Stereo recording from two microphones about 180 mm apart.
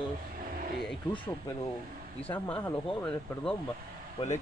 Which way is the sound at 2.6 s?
5° left (ahead or behind).